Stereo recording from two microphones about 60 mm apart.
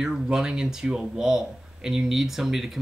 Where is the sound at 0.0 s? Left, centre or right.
Centre.